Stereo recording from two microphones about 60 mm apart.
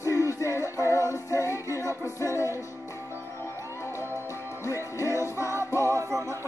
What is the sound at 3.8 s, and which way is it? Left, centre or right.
Music, left.